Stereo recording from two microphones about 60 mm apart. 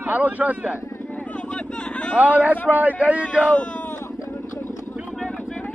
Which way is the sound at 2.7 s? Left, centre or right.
Right.